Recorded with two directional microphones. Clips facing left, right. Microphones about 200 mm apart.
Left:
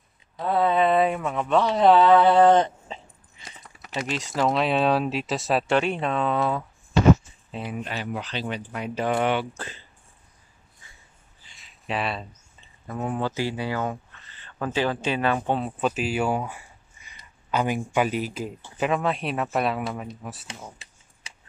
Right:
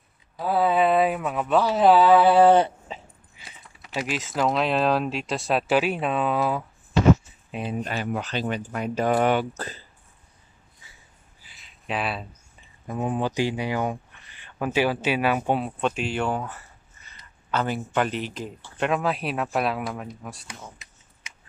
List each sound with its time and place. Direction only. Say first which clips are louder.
0.4 s speech: even; 5° right (ahead or behind)
7.7 s speech: right 3 dB; 45° right (ahead or behind)
11.4 s a sound: even; centre (ahead or behind)
12.8 s speech: right 2 dB; 15° right (ahead or behind)
15.8 s speech: left 1 dB; 5° left (ahead or behind)
20.8 s a sound: left 1 dB; 30° left (ahead or behind)
21.2 s shuffling cards: left 1 dB; 30° left (ahead or behind)